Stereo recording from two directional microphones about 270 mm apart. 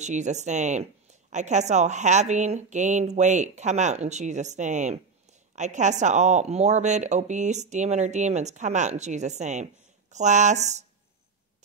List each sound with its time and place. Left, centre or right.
0.0 s speech: right